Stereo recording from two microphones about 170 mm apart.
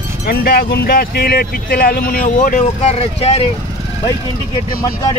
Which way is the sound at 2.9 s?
35° left (ahead or behind).